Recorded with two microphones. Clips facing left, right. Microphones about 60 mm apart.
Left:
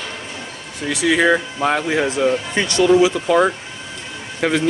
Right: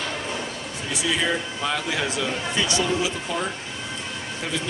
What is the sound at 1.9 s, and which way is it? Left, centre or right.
Speech, left.